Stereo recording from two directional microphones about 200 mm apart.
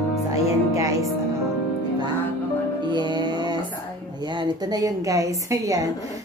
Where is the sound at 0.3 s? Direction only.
15° right (ahead or behind).